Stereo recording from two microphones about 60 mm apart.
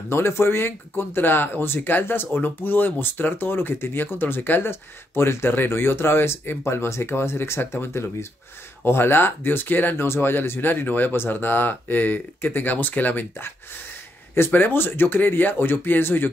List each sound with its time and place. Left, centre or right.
0.1 s speech: left
10.0 s speech: left